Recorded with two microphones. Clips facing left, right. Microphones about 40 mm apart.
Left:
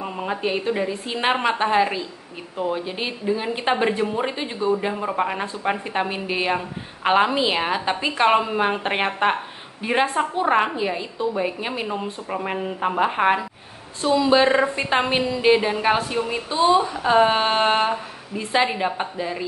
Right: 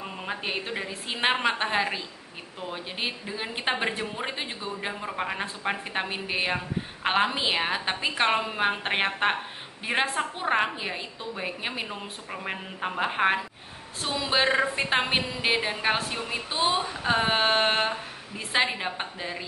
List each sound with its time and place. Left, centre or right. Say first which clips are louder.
0.0 s a sound: left 7 dB; centre
0.4 s a woman's voice: left 10 dB; centre
14.0 s speech: left 8 dB; centre
16.4 s a woman's voice: left 8 dB; right
16.9 s a woman's voice: left 7 dB; centre
18.9 s speech: left 7 dB; centre